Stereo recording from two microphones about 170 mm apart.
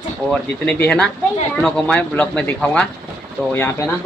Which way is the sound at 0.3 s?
5° left (ahead or behind).